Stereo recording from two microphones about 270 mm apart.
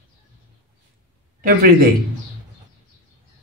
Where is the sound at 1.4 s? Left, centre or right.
Right.